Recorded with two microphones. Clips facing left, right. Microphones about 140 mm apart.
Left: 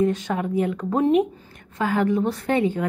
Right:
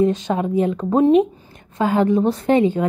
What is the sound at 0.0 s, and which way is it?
A woman's voice, 25° right (ahead or behind).